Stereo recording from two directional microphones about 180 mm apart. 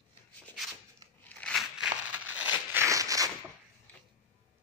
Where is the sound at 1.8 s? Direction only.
5° right (ahead or behind).